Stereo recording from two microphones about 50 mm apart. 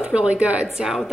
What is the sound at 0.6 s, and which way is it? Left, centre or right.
Speech, centre.